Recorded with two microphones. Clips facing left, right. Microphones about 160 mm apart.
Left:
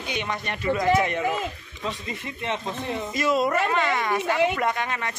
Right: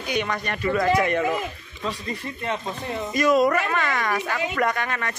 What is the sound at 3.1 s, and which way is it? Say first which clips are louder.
Speech: right 4 dB; 25° left (ahead or behind).